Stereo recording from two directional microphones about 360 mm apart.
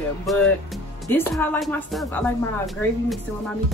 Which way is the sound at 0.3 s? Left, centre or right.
Centre.